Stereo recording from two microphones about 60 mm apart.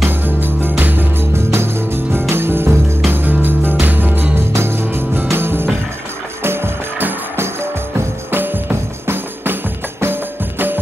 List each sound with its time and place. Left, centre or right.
0.0 s music: right
2.2 s music: right
4.6 s music: right